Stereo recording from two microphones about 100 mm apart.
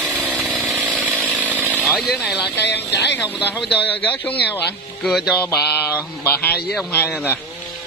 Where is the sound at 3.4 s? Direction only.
20° left (ahead or behind).